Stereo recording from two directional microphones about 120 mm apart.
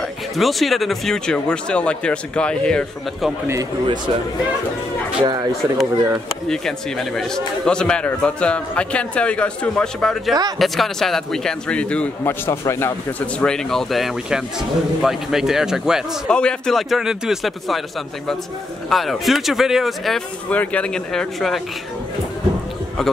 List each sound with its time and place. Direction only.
0.4 s a man's voice: centre (ahead or behind)
3.8 s speech: 40° right (ahead or behind)
5.2 s speech: 35° right (ahead or behind)
6.5 s a man's voice: 5° left (ahead or behind); by 12.9 s 20° left (ahead or behind)
13.4 s a man's voice: 5° left (ahead or behind)
16.3 s a man's voice: 5° left (ahead or behind)
18.9 s a man's voice: centre (ahead or behind)
20.4 s a man's voice: 10° left (ahead or behind)